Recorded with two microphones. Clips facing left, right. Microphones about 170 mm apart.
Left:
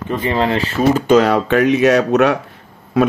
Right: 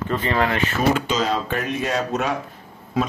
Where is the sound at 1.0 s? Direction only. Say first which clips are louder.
Left 10 dB; 65° left (ahead or behind).